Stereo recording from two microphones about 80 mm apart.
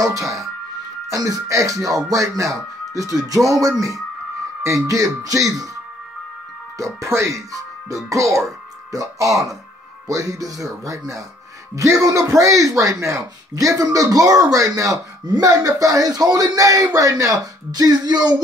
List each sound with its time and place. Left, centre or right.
0.0 s speech: right
4.6 s speech: right
6.8 s speech: right